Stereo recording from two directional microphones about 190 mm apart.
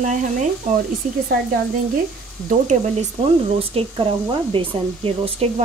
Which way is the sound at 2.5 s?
40° right (ahead or behind).